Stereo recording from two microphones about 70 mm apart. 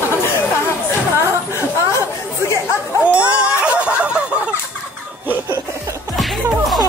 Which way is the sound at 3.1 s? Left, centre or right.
Centre.